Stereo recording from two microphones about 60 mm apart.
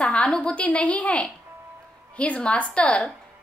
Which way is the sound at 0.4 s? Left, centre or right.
Left.